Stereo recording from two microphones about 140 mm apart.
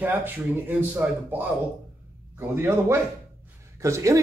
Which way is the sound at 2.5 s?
15° right (ahead or behind).